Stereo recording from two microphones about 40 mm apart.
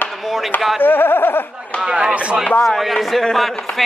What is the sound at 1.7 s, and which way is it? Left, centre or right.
Speech, centre.